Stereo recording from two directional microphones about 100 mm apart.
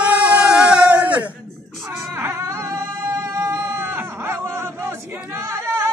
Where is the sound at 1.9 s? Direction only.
25° right (ahead or behind).